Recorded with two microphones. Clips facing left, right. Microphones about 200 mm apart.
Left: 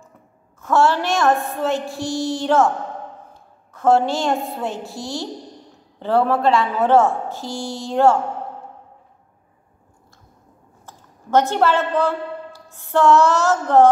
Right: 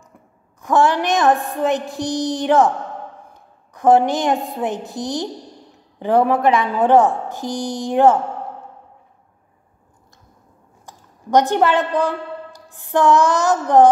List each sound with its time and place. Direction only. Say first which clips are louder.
0.6 s a woman's voice: right 1 dB; 15° right (ahead or behind)
3.3 s a sound: right 1 dB; 15° right (ahead or behind)
4.5 s a woman's voice: right 3 dB; 15° right (ahead or behind)
10.9 s a woman's voice: right 2 dB; 15° right (ahead or behind)